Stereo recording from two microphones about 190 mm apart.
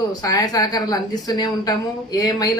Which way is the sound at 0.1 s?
20° left (ahead or behind).